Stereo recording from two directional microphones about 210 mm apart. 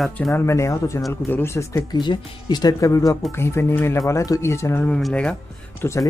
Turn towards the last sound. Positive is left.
turn(degrees=15)  # may be behind; listen again after turning